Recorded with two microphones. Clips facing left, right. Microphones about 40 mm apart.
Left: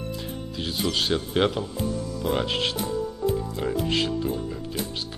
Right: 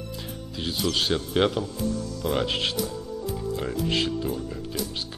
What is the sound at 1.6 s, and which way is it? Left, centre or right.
Speech, centre.